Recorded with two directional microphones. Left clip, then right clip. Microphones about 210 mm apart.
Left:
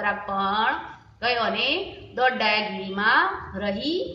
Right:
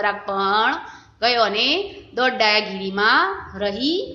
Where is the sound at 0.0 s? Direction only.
45° right (ahead or behind).